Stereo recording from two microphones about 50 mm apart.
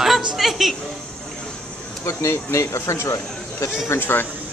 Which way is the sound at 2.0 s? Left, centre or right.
Left.